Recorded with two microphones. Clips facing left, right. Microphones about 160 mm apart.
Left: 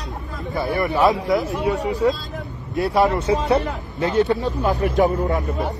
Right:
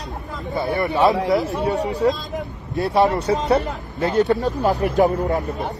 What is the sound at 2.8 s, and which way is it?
A man's voice, 25° right (ahead or behind).